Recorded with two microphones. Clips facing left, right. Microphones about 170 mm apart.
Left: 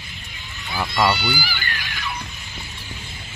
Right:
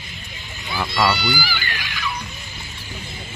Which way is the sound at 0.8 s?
Centre (ahead or behind).